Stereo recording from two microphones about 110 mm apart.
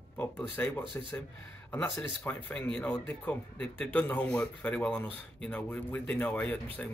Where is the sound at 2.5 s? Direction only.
10° left (ahead or behind).